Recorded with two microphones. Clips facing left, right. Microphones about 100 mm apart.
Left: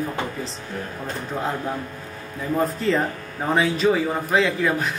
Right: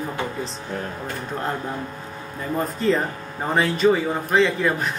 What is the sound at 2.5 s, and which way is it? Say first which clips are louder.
A man's voice: even; centre (ahead or behind).